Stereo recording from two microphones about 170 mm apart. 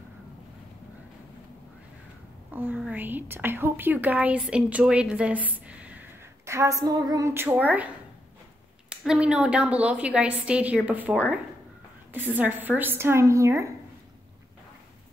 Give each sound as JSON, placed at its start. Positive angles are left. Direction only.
{"t": 2.5, "sound": "a woman's voice", "side_deg": -10}
{"t": 5.5, "sound": "a sound", "side_deg": -10}
{"t": 6.4, "sound": "a woman's voice", "side_deg": -15}